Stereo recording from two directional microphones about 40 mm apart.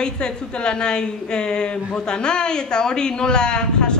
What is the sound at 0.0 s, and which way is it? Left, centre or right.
A man's voice, left.